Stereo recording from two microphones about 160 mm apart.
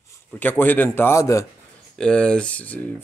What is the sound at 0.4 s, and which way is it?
Speech, 10° left (ahead or behind).